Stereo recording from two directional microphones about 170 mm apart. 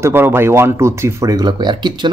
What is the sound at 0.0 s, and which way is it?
Speech, 10° right (ahead or behind).